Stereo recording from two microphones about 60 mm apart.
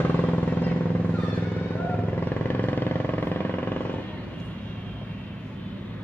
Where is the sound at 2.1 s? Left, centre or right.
Left.